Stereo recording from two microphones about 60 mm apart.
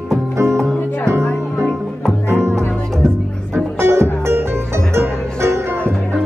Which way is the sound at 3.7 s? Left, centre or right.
Right.